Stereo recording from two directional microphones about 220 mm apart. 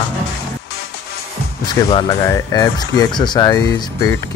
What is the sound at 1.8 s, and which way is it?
Speech, 25° left (ahead or behind).